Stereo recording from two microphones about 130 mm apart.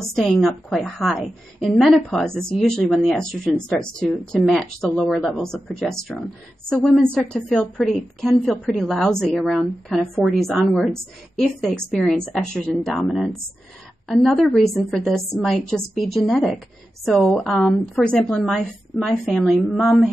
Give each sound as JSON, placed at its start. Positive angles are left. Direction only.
{"t": 0.0, "sound": "speech", "side_deg": 5}